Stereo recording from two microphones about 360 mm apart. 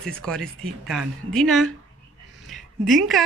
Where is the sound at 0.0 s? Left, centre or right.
Centre.